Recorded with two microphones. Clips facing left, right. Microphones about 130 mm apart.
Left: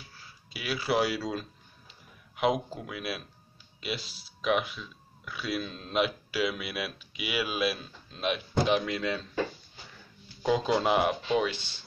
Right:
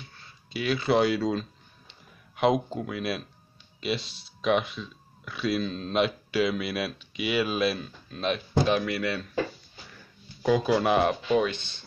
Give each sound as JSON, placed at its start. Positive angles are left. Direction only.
{"t": 0.0, "sound": "a sound", "side_deg": 5}
{"t": 3.8, "sound": "speech", "side_deg": 0}
{"t": 10.7, "sound": "speech", "side_deg": 20}